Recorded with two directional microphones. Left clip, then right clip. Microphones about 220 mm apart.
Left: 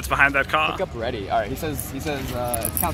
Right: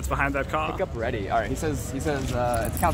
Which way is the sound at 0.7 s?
45° left (ahead or behind).